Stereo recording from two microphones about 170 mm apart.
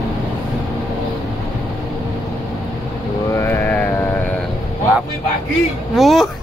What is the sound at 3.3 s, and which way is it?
Vehicle, 15° left (ahead or behind).